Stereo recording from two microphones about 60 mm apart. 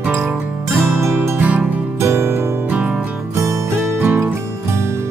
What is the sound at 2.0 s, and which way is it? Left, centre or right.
Music, right.